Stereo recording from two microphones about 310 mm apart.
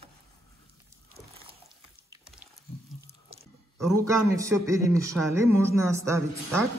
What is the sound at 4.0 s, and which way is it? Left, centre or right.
Speech, centre.